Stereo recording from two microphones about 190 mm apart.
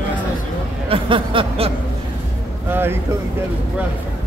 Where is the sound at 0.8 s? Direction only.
30° right (ahead or behind).